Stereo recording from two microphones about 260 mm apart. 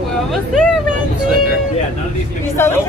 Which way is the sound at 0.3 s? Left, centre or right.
Centre.